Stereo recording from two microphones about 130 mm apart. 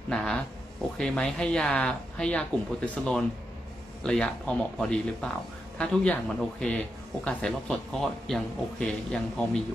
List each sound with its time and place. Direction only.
0.1 s speech: 5° left (ahead or behind)